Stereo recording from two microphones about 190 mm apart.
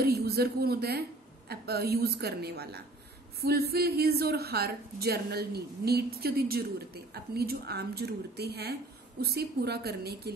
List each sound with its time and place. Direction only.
0.0 s a woman's voice: 55° right (ahead or behind)